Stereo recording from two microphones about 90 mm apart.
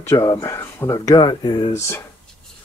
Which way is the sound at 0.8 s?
45° left (ahead or behind).